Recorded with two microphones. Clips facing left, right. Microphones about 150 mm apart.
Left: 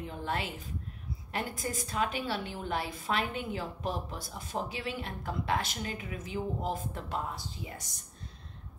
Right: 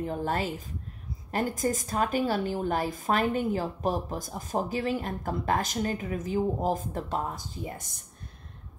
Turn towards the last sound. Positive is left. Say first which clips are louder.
# right 6 dB
turn(degrees=-50)  # may be behind; listen again after turning